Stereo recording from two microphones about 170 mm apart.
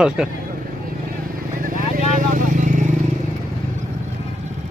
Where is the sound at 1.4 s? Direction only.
55° right (ahead or behind).